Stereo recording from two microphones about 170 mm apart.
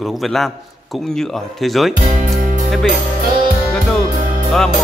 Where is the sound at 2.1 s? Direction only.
45° right (ahead or behind).